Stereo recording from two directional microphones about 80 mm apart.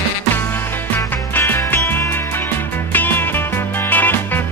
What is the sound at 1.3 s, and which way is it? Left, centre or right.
Music, left.